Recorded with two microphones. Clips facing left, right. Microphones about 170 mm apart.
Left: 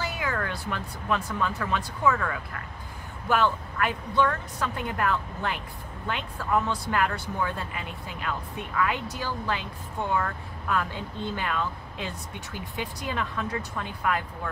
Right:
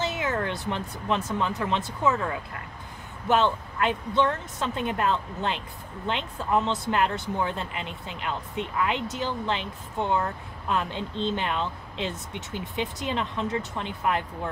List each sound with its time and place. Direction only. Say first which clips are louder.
0.0 s speech: right 3 dB; 20° right (ahead or behind)